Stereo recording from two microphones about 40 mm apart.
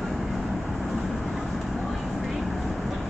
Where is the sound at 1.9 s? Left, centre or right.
Centre.